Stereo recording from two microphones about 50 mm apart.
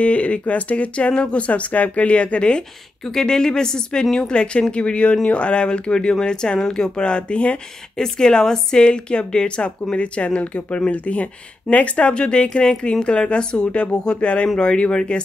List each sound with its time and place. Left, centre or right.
0.0 s a woman's voice: left
3.1 s a woman's voice: centre
4.3 s a woman's voice: centre